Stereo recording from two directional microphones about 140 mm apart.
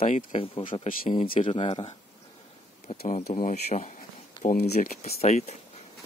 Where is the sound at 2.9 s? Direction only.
80° left; by 4.0 s 55° left (ahead or behind).